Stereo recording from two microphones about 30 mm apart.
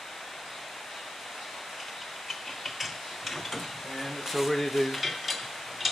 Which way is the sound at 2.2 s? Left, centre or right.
Centre.